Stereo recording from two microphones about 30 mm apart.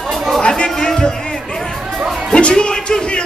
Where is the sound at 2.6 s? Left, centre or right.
Left.